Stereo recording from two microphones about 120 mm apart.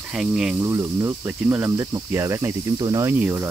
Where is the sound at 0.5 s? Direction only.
25° right (ahead or behind).